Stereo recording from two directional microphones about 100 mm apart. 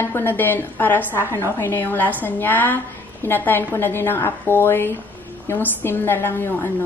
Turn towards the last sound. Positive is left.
turn(degrees=20)  # may be behind; listen again after turning